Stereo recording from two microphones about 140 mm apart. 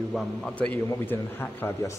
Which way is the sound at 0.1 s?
5° left (ahead or behind).